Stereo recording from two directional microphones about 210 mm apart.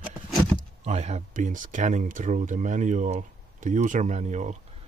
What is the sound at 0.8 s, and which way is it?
Speech, 30° right (ahead or behind).